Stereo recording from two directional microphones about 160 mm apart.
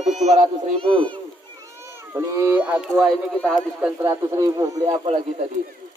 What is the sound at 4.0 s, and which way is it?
Speech, 20° right (ahead or behind).